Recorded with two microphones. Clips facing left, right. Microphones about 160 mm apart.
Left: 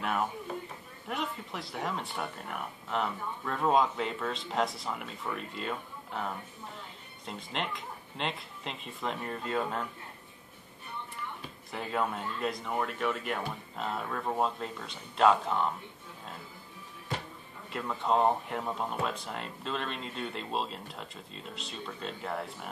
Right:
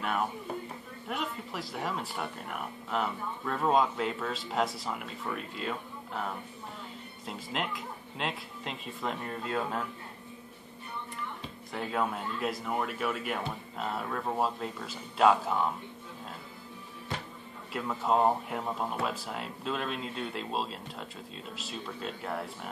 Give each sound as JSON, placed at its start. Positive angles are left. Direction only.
{"t": 0.0, "sound": "speech", "side_deg": 0}
{"t": 11.7, "sound": "speech", "side_deg": 0}
{"t": 17.7, "sound": "speech", "side_deg": -5}